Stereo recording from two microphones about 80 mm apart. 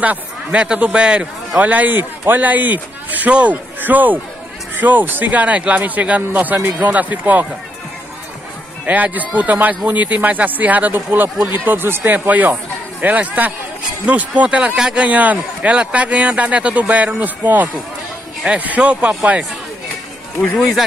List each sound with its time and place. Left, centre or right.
0.0 s a man's voice: centre
8.8 s a man's voice: centre